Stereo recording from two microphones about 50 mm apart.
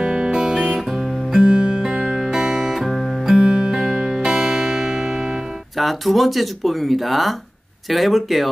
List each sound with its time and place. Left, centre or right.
0.0 s guitar: centre
1.4 s music: centre
3.3 s music: centre
4.2 s guitar: centre
7.9 s speech: centre